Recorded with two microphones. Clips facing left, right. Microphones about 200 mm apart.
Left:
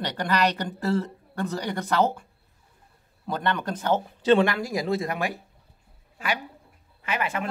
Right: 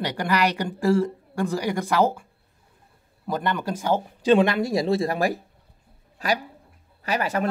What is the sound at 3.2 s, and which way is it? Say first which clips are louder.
Speech: right 1 dB; 5° right (ahead or behind).